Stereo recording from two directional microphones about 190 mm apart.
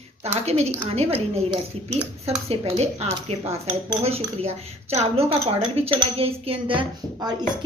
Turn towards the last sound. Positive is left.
turn(degrees=-20)  # may be behind; listen again after turning